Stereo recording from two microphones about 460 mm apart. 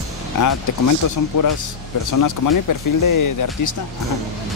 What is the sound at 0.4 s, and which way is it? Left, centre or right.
Speech, left.